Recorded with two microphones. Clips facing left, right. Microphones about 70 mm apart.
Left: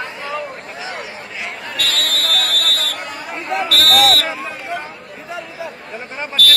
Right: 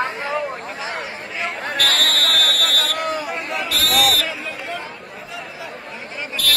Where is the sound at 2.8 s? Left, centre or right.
Right.